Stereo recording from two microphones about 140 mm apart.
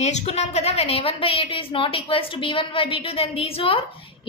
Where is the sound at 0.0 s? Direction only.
50° left (ahead or behind).